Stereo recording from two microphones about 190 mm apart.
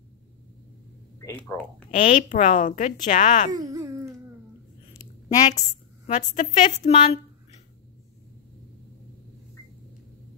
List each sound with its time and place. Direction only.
1.2 s speech: 10° left (ahead or behind)
1.9 s a woman's voice: 40° left (ahead or behind)
3.5 s a sound: 15° right (ahead or behind)
6.0 s a woman's voice: 40° left (ahead or behind)